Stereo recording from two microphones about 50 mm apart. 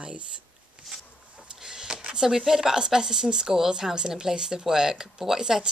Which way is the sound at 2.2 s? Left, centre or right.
Centre.